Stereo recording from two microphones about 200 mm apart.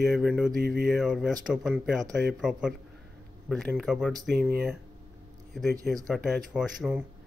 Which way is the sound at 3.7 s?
5° right (ahead or behind).